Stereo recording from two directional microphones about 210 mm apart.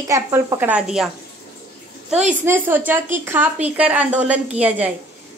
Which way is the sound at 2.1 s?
5° right (ahead or behind).